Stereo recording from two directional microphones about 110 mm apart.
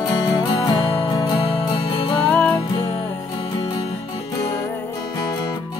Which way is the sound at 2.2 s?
10° left (ahead or behind).